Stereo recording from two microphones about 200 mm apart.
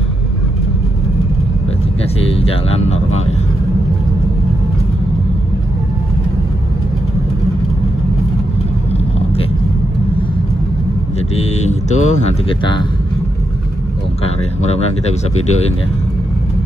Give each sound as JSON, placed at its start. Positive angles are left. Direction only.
{"t": 2.4, "sound": "speech", "side_deg": 30}
{"t": 11.3, "sound": "speech", "side_deg": 35}
{"t": 14.2, "sound": "speech", "side_deg": 30}